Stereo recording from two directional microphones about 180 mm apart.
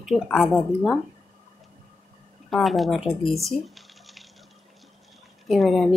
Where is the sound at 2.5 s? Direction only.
Centre (ahead or behind).